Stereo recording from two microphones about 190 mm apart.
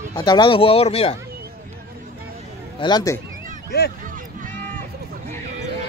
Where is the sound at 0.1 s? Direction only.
20° left (ahead or behind).